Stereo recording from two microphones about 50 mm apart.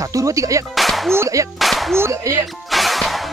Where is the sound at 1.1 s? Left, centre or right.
Right.